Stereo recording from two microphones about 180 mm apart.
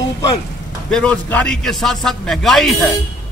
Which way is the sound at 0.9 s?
5° left (ahead or behind).